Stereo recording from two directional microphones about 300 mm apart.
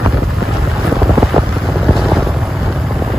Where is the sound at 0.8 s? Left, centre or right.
Centre.